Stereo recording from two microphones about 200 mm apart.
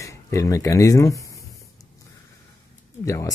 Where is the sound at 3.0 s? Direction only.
15° left (ahead or behind).